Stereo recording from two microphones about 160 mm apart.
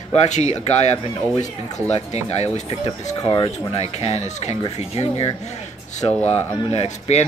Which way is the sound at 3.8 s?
40° left (ahead or behind).